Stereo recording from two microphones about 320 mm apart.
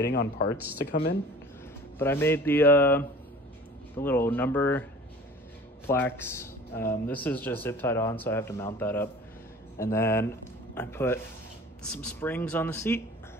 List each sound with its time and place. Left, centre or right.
0.0 s speech: left
2.0 s speech: centre
5.9 s speech: centre